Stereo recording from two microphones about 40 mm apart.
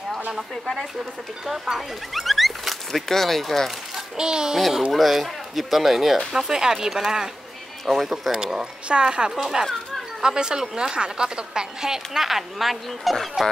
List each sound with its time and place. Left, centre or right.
2.1 s speech: centre
4.2 s speech: centre
4.6 s a woman's voice: centre
8.8 s speech: right
9.3 s a woman's voice: centre